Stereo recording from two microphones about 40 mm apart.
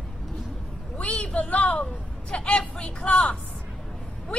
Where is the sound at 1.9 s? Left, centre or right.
Left.